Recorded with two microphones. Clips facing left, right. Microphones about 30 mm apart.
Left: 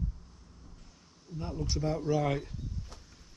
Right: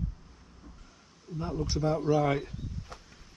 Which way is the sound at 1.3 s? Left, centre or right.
Centre.